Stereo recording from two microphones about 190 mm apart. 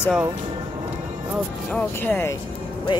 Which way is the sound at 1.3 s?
5° left (ahead or behind).